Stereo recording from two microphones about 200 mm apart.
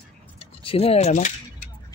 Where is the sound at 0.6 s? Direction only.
30° left (ahead or behind).